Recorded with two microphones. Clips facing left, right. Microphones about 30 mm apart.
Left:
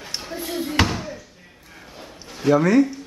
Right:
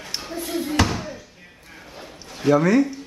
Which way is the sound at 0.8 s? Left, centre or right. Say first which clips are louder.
Even; centre.